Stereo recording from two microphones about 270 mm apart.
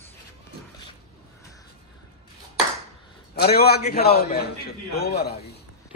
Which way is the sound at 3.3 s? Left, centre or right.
Left.